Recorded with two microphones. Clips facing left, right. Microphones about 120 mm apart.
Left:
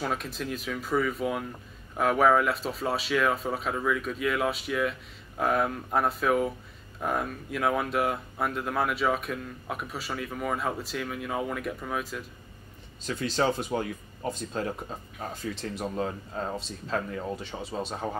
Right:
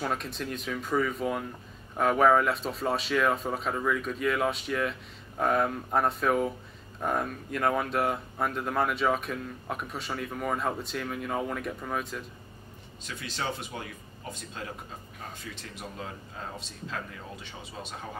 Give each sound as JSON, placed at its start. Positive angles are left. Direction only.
{"t": 0.0, "sound": "speech", "side_deg": 0}
{"t": 13.0, "sound": "speech", "side_deg": 40}
{"t": 15.7, "sound": "speech", "side_deg": 35}